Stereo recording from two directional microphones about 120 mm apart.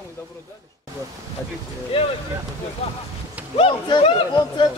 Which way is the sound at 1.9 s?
55° left (ahead or behind).